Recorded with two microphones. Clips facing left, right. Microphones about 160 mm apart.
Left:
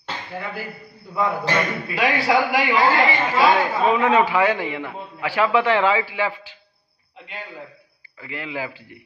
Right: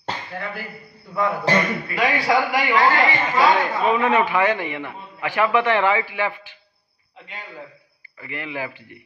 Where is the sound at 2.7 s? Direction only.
10° left (ahead or behind).